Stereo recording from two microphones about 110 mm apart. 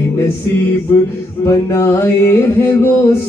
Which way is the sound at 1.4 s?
25° left (ahead or behind).